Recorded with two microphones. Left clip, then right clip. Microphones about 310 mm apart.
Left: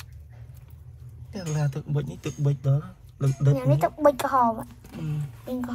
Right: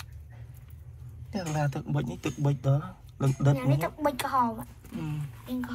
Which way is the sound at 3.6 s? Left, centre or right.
Centre.